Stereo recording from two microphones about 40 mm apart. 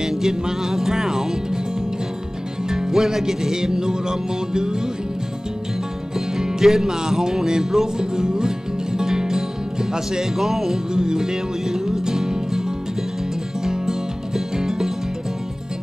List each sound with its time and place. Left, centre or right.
0.1 s music: centre
2.7 s music: centre
6.1 s music: centre
13.7 s music: centre